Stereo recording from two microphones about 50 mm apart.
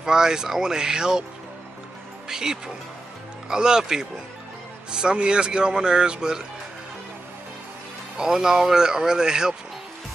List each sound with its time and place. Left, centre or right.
0.0 s speech: centre
2.2 s speech: centre
8.2 s speech: centre